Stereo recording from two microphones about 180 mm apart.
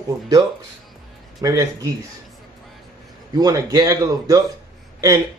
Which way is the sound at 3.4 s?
20° right (ahead or behind).